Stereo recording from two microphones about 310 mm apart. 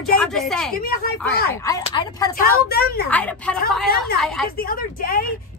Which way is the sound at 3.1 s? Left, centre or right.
Centre.